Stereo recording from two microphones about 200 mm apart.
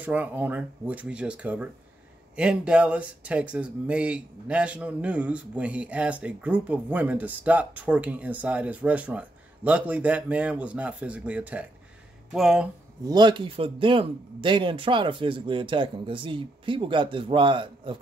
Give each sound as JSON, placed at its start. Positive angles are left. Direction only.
{"t": 0.0, "sound": "speech", "side_deg": -10}
{"t": 13.0, "sound": "a man's voice", "side_deg": -20}